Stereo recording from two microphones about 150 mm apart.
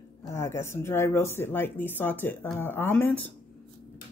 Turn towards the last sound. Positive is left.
turn(degrees=10)  # may be behind; listen again after turning